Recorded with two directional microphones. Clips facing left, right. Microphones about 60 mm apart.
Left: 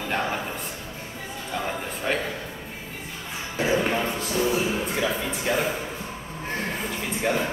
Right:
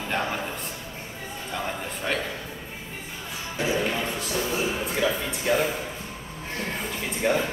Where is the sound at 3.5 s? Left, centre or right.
Left.